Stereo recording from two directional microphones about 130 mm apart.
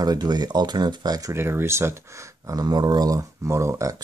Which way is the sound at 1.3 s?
20° right (ahead or behind).